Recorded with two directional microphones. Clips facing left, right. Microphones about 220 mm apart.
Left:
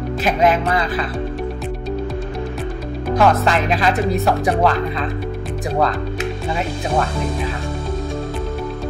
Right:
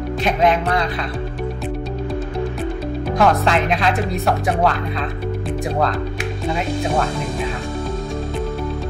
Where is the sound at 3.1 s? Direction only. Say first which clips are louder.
Left 1 dB; centre (ahead or behind).